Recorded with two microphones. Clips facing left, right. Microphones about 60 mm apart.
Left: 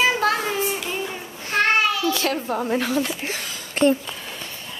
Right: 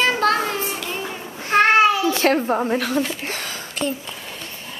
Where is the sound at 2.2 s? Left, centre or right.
Right.